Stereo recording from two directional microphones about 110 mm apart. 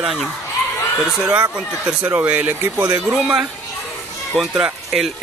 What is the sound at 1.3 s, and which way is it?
A man's voice, 15° right (ahead or behind).